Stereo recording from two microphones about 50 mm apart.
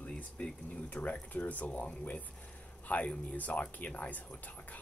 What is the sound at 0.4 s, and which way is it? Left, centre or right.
Speech, left.